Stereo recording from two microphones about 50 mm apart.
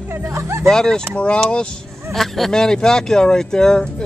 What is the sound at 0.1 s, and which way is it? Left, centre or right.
Speech, right.